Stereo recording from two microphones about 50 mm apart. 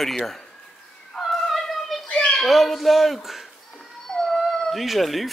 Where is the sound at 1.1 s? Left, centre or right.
Centre.